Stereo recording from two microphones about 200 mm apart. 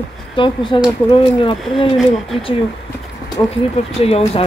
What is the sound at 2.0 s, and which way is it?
Speech, centre (ahead or behind).